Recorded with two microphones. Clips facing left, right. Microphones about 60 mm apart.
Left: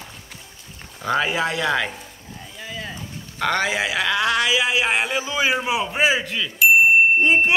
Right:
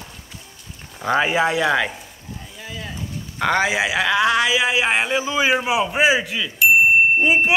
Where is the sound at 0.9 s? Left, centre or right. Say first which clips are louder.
Right 3 dB; right.